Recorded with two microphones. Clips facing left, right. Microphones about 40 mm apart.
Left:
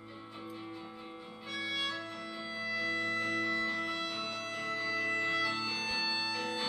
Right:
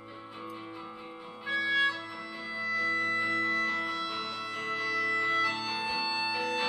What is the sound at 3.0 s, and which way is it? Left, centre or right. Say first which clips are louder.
Music: right 4 dB; right.